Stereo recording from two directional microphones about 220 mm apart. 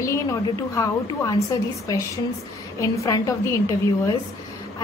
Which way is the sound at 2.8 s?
15° left (ahead or behind).